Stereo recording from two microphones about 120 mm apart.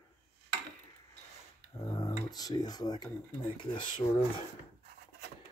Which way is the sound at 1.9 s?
35° left (ahead or behind).